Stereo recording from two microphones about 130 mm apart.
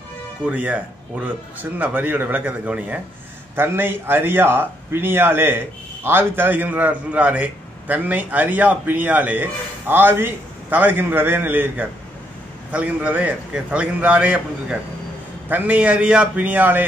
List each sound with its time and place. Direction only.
0.5 s speech: 10° right (ahead or behind)